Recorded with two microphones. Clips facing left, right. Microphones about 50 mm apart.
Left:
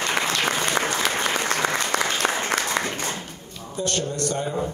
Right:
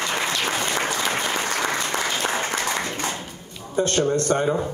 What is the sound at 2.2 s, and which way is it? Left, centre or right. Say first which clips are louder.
Applause: even; left.